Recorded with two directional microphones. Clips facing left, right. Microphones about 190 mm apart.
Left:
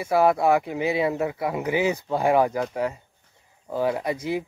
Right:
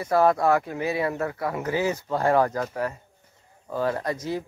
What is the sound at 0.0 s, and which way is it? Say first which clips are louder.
Speech: left 1 dB; 10° left (ahead or behind).